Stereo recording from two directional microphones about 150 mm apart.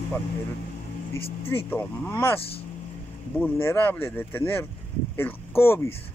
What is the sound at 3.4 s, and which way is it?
Speech, 15° left (ahead or behind).